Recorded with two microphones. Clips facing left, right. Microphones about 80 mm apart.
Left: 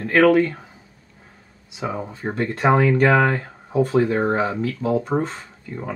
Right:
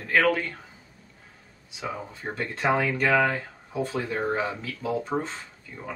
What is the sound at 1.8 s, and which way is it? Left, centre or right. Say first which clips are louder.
Speech: left 7 dB; left.